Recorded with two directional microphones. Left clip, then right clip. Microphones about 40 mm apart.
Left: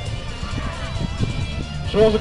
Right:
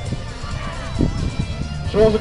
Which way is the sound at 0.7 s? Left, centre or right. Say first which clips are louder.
Right 4 dB; right.